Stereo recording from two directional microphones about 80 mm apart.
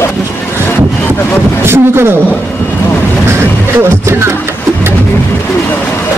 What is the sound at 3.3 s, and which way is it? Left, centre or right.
Music, right.